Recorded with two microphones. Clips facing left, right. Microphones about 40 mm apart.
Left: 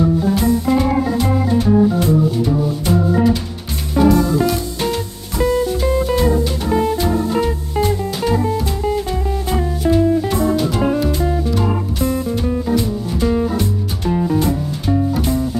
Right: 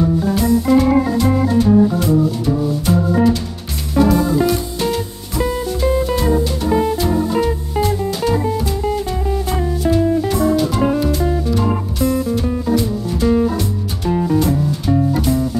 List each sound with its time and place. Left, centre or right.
0.3 s organ: centre
1.5 s music: centre
12.0 s music: centre
12.4 s music: centre